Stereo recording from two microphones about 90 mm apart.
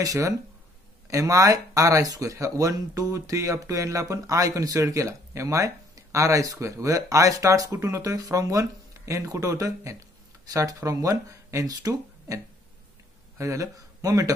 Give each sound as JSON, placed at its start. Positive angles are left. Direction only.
{"t": 0.0, "sound": "speech", "side_deg": -40}
{"t": 13.4, "sound": "speech", "side_deg": -40}